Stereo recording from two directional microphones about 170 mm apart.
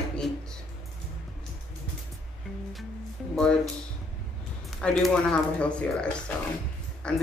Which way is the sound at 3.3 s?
5° left (ahead or behind).